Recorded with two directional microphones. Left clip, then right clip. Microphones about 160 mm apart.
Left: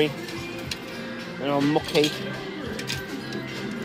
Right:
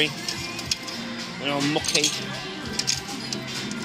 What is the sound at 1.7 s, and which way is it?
Speech, 40° left (ahead or behind).